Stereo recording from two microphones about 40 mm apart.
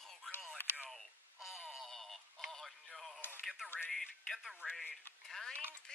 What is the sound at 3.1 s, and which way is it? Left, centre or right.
Radio, left.